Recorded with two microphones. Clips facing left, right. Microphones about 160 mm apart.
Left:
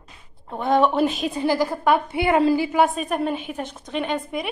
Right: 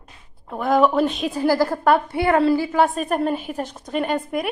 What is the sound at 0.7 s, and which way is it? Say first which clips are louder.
Speech: right 1 dB; centre (ahead or behind).